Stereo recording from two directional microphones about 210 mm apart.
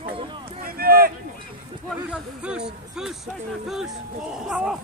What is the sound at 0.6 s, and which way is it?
Speech, 45° right (ahead or behind).